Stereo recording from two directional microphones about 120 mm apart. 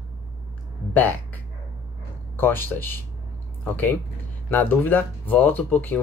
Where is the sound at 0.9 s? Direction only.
15° left (ahead or behind).